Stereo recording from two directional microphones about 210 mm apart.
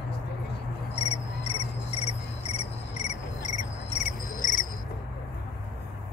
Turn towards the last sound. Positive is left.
turn(degrees=40)  # may be behind; listen again after turning